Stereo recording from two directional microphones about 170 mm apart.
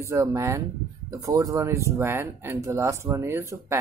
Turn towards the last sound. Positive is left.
turn(degrees=-15)  # may be behind; listen again after turning